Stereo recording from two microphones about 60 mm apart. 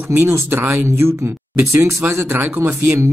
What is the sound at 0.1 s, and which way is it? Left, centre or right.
Speech, right.